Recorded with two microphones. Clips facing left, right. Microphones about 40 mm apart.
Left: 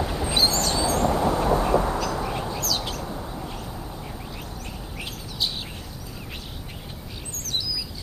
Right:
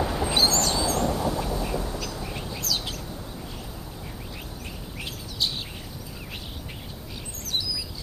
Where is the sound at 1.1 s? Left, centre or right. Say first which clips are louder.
Left 5 dB; left.